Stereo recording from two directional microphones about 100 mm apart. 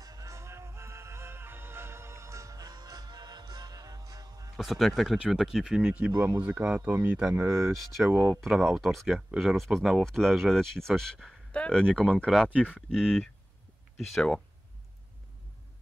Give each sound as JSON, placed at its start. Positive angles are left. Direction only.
{"t": 0.0, "sound": "music", "side_deg": -35}
{"t": 4.6, "sound": "speech", "side_deg": 0}
{"t": 7.4, "sound": "speech", "side_deg": -30}
{"t": 8.4, "sound": "speech", "side_deg": 0}